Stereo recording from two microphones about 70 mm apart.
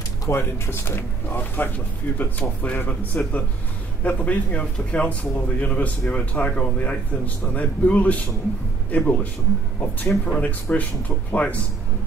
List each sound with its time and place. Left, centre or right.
0.3 s a man's voice: left